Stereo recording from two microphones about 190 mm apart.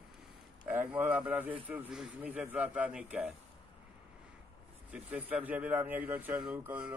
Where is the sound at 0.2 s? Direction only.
10° right (ahead or behind).